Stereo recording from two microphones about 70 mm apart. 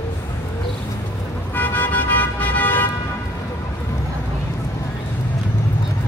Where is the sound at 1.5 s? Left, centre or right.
Left.